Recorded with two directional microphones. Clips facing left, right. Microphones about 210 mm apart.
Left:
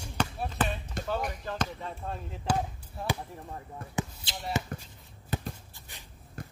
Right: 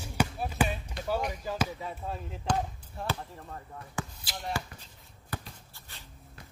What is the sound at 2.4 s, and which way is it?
Speech, centre (ahead or behind).